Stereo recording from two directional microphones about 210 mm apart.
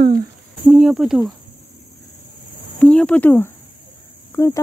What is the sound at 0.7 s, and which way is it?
Speech, centre (ahead or behind).